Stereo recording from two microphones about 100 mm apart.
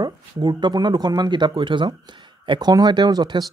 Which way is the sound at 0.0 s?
45° right (ahead or behind).